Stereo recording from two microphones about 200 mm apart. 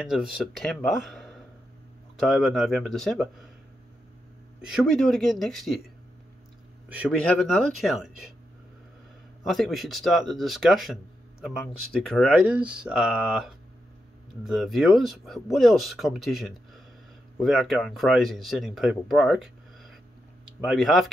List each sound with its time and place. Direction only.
0.0 s speech: centre (ahead or behind)
4.6 s speech: 5° right (ahead or behind)
6.9 s a man's voice: 5° right (ahead or behind)
7.2 s speech: 5° left (ahead or behind)
9.5 s speech: centre (ahead or behind)